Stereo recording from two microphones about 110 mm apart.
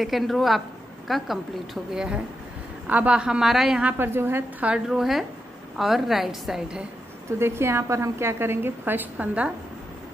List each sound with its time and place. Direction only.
0.0 s a woman's voice: centre (ahead or behind)
4.0 s a woman's voice: 20° right (ahead or behind)
7.3 s a woman's voice: 25° right (ahead or behind)